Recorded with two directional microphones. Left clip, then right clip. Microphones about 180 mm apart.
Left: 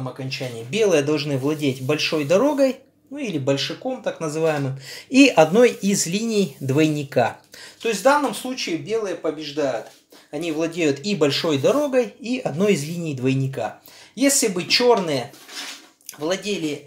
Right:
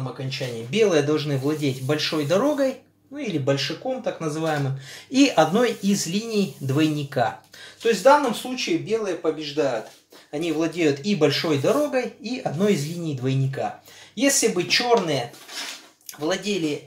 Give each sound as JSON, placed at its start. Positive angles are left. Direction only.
{"t": 0.3, "sound": "speech", "side_deg": 30}
{"t": 8.5, "sound": "speech", "side_deg": 40}